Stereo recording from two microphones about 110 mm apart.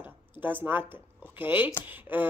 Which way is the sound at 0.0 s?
15° right (ahead or behind).